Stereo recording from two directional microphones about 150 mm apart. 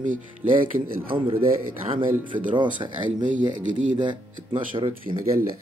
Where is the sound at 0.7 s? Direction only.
70° right (ahead or behind).